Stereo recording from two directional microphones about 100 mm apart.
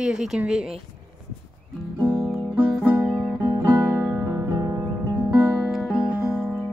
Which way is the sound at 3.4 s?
40° right (ahead or behind).